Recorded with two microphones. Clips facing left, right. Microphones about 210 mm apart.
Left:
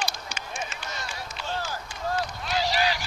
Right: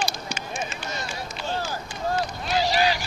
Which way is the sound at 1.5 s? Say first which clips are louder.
Right 3 dB; 30° right (ahead or behind).